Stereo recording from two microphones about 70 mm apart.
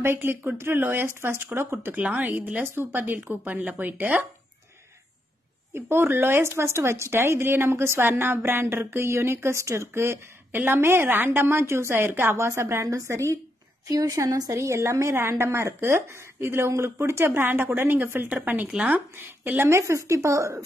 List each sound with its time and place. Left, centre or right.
0.0 s speech: right
2.0 s a woman's voice: right
2.7 s a woman's voice: right
5.7 s a woman's voice: right
19.6 s speech: right